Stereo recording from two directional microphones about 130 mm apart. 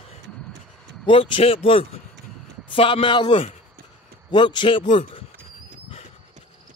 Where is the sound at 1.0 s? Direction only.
40° left (ahead or behind).